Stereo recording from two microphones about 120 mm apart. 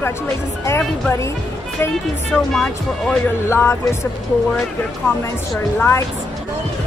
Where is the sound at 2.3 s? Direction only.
5° left (ahead or behind).